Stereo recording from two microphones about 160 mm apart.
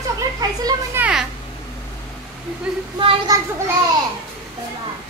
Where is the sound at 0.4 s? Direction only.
25° right (ahead or behind).